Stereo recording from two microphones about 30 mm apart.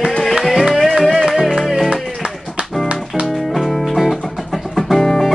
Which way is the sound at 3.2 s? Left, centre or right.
Centre.